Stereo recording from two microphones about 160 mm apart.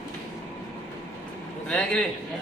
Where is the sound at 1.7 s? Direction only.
5° left (ahead or behind).